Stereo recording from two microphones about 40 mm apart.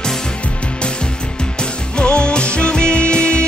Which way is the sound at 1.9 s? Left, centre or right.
Left.